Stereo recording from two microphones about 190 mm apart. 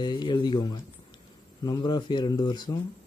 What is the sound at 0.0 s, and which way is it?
Speech, 25° left (ahead or behind).